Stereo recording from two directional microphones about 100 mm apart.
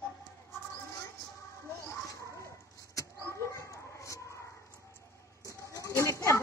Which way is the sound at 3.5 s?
30° left (ahead or behind).